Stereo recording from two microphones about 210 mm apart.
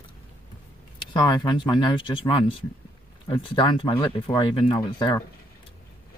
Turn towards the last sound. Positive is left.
turn(degrees=20)  # may be behind; listen again after turning